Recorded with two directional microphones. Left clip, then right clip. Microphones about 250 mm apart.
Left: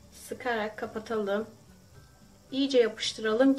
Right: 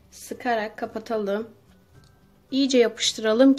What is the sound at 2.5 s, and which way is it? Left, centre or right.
Speech, right.